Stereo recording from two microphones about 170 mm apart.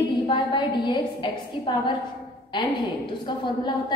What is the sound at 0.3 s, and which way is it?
A woman's voice, 30° left (ahead or behind).